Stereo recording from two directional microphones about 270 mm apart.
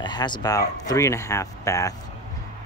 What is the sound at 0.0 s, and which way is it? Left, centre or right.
Speech, centre.